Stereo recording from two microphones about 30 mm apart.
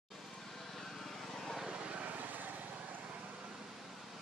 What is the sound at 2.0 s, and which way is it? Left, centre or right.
Vehicle, right.